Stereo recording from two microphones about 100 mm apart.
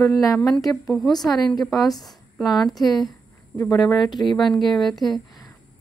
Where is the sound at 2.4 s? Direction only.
40° left (ahead or behind).